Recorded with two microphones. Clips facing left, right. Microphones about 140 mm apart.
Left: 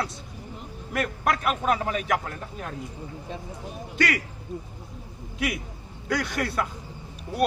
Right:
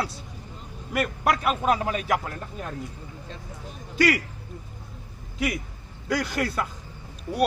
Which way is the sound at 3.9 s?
Centre (ahead or behind).